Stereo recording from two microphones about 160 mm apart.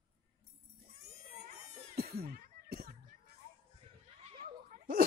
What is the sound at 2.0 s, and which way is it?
Music, 75° right (ahead or behind).